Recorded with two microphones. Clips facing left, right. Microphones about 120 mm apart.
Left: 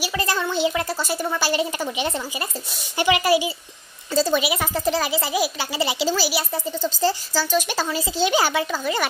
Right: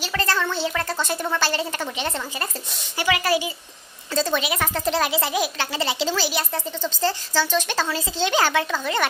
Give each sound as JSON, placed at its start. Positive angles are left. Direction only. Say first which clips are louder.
{"t": 0.0, "sound": "a child's voice", "louder": "even", "side_deg": 10}